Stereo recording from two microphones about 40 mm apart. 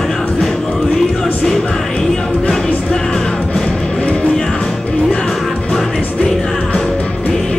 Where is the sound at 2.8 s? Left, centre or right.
Left.